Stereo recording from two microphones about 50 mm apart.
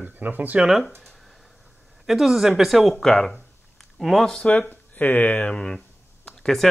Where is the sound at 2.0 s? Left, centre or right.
Centre.